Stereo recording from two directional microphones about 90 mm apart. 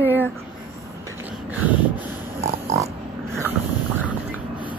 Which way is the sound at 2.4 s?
35° right (ahead or behind).